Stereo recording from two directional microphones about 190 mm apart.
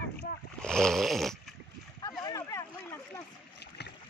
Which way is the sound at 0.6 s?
5° left (ahead or behind).